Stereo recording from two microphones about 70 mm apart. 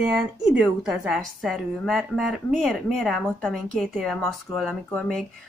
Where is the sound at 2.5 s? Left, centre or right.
Centre.